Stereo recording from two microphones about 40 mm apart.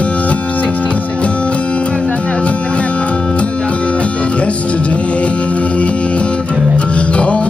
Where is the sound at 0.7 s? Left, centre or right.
Left.